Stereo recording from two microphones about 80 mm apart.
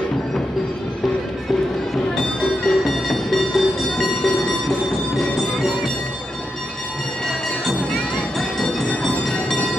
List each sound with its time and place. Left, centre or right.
2.1 s bell: centre
8.4 s train: centre